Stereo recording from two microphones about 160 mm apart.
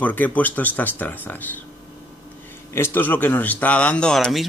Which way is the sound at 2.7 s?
15° left (ahead or behind).